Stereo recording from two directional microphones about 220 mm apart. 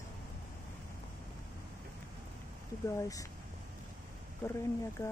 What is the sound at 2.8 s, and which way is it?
Speech, 15° left (ahead or behind).